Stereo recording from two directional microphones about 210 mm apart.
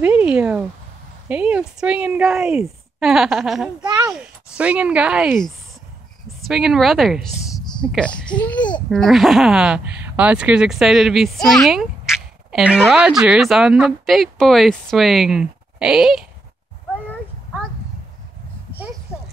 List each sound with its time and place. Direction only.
0.0 s speech: 5° right (ahead or behind)
3.8 s a sound: 20° right (ahead or behind)
4.1 s speech: 5° right (ahead or behind)